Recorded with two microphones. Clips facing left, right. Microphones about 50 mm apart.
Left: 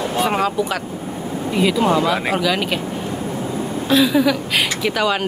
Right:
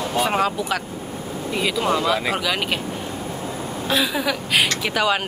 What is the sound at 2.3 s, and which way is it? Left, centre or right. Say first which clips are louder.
Speech: left 4 dB; centre.